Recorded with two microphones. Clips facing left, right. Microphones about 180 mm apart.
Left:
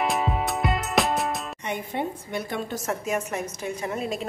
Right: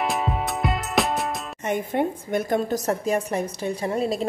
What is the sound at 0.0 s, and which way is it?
Music, centre (ahead or behind).